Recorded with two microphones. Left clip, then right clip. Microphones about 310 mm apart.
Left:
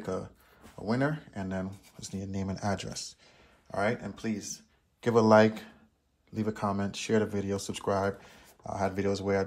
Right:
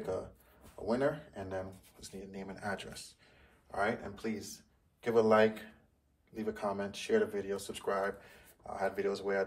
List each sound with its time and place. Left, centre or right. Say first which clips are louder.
0.8 s speech: left 2 dB; left